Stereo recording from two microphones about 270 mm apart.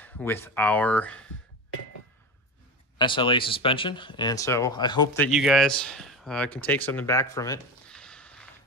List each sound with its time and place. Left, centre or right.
0.0 s speech: centre
3.0 s speech: centre
5.3 s speech: centre